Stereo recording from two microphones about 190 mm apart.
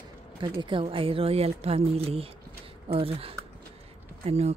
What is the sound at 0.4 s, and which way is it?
A woman's voice, 25° right (ahead or behind).